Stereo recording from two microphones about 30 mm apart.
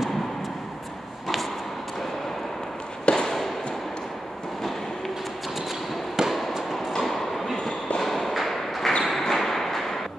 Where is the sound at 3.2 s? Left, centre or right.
Centre.